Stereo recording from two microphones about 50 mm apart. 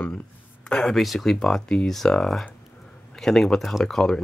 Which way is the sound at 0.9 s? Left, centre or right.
Centre.